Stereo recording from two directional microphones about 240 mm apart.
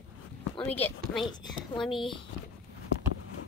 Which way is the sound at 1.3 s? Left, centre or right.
Centre.